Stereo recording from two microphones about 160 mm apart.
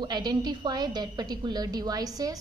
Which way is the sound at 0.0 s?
25° right (ahead or behind).